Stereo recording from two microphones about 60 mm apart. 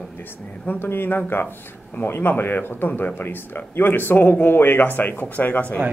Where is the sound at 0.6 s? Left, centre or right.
Left.